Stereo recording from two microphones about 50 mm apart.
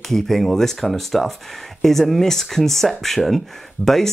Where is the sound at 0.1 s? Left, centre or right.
Centre.